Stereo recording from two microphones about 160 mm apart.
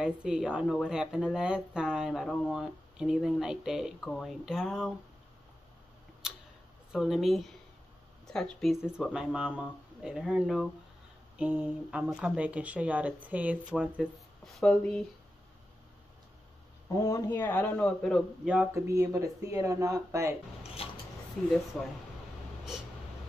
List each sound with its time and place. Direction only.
0.0 s speech: 5° right (ahead or behind)
6.9 s speech: centre (ahead or behind)
17.0 s speech: 15° left (ahead or behind); by 18.7 s 5° right (ahead or behind)
18.7 s speech: 15° right (ahead or behind)
21.4 s speech: centre (ahead or behind)